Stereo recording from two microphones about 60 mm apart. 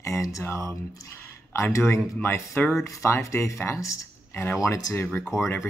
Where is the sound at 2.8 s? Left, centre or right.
Left.